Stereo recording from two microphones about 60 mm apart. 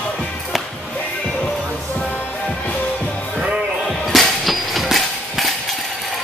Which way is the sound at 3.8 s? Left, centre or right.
Centre.